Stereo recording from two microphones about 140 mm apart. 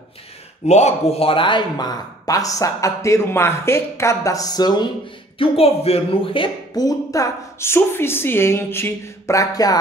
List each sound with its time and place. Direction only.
0.7 s speech: 50° left (ahead or behind); by 4.8 s 30° left (ahead or behind)
5.4 s a woman's voice: 45° left (ahead or behind)
6.7 s a woman's voice: 25° left (ahead or behind)